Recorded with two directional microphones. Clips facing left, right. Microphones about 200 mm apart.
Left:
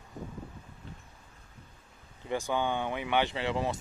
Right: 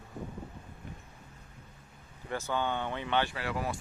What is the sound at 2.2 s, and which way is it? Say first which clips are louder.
Speech: left 2 dB; 15° left (ahead or behind).